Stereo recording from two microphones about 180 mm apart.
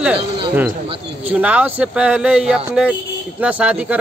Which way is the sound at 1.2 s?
10° right (ahead or behind).